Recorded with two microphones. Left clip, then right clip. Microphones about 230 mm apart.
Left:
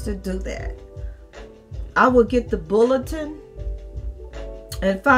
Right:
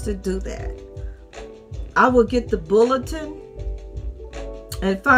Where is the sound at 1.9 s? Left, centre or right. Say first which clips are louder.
Even; centre.